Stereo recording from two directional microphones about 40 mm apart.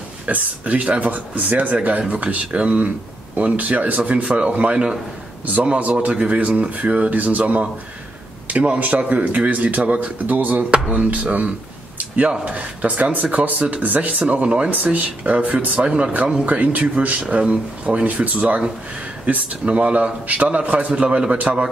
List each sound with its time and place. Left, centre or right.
0.3 s speech: right
5.9 s speech: right